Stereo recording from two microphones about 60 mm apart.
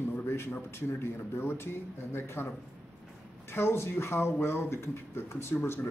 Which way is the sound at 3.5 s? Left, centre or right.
Left.